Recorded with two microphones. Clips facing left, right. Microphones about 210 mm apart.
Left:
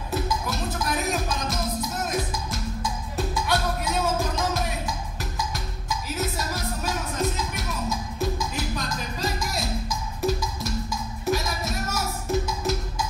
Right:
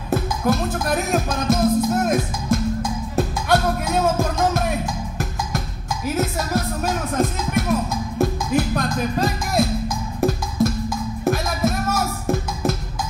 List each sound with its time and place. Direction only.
0.1 s music: 50° right (ahead or behind)